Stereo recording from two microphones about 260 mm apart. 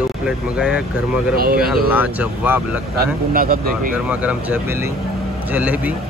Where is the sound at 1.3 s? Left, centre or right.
Right.